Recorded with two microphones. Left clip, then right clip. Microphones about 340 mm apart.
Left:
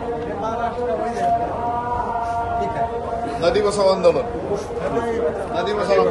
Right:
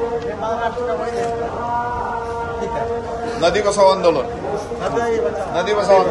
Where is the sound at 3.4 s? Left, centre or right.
Right.